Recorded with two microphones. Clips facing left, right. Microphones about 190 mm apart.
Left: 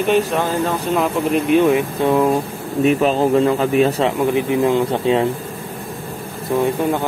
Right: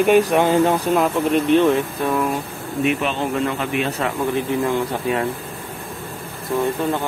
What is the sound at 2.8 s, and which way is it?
Speech, 35° left (ahead or behind).